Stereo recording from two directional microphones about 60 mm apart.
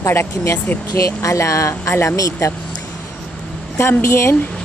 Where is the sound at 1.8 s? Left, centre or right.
Left.